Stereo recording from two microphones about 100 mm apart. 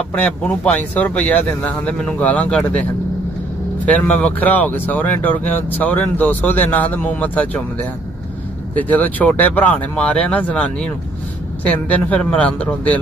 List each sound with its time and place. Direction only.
0.1 s speech: 10° left (ahead or behind)
8.7 s speech: 15° left (ahead or behind)